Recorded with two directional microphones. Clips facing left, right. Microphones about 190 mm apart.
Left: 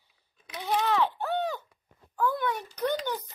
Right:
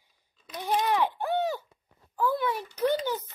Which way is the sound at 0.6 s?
15° right (ahead or behind).